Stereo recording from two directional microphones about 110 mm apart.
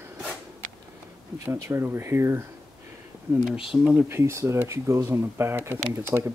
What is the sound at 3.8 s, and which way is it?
Speech, 15° right (ahead or behind).